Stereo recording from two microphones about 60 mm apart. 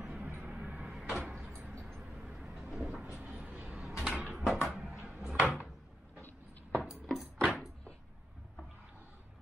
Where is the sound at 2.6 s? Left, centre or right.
Centre.